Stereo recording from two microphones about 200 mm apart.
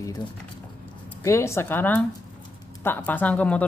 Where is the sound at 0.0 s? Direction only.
20° left (ahead or behind).